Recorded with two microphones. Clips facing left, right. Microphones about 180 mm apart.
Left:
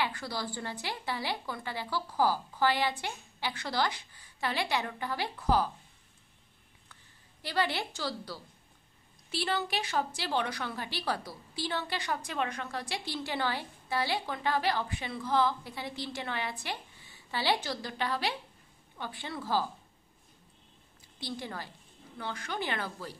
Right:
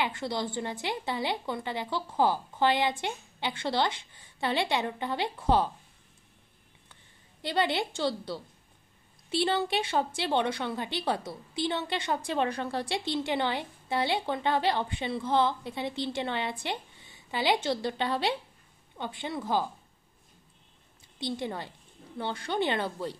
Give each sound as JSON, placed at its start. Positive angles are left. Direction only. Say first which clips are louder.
{"t": 0.0, "sound": "a woman's voice", "louder": "right 4 dB", "side_deg": -20}
{"t": 7.4, "sound": "a woman's voice", "louder": "right 4 dB", "side_deg": -25}
{"t": 21.2, "sound": "a woman's voice", "louder": "right 6 dB", "side_deg": -25}